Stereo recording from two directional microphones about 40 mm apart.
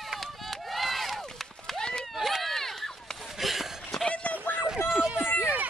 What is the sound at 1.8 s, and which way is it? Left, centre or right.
Run, centre.